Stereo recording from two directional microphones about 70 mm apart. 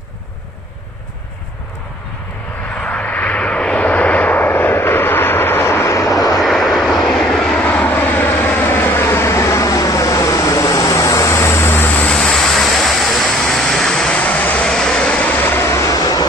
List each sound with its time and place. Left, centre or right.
2.7 s vehicle: centre; by 5.9 s left
5.9 s vehicle: left
6.4 s vehicle: centre
7.6 s vehicle: left
12.1 s vehicle: centre
14.2 s vehicle: left
14.7 s vehicle: centre; by 15.7 s left
15.7 s vehicle: left